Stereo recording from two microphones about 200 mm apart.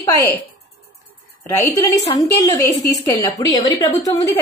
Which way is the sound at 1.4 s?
15° left (ahead or behind).